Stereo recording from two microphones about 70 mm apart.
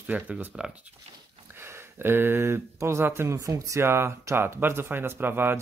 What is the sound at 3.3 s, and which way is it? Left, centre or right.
Speech, right.